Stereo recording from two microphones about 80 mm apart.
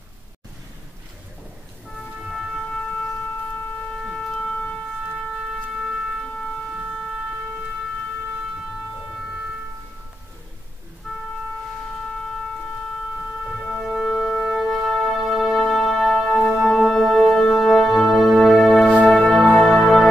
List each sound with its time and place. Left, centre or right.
2.2 s shofar: centre
4.0 s wind instrument: centre
11.1 s music: centre
13.7 s music: centre
16.6 s organ: centre
19.0 s music: centre